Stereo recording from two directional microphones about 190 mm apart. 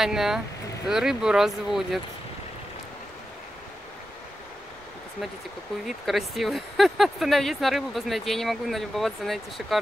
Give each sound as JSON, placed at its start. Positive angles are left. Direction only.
{"t": 0.0, "sound": "speech", "side_deg": 0}
{"t": 5.9, "sound": "speech", "side_deg": 0}